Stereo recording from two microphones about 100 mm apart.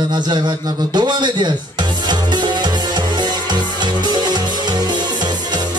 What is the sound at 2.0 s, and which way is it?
Music, 45° right (ahead or behind).